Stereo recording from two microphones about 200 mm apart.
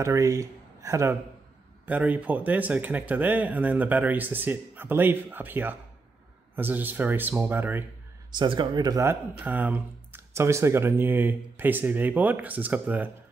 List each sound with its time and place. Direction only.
0.0 s speech: 15° right (ahead or behind)
8.4 s speech: 20° right (ahead or behind)